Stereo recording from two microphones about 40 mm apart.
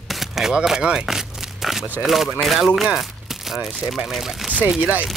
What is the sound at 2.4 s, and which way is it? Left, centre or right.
Speech, centre.